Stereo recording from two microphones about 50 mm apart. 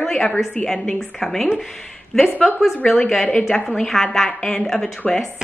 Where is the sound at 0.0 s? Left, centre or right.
Centre.